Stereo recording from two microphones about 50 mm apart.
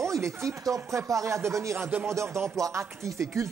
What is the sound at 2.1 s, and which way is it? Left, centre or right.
Speech, right.